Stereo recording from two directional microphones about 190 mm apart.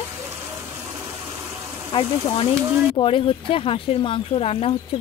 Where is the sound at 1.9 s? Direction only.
25° left (ahead or behind).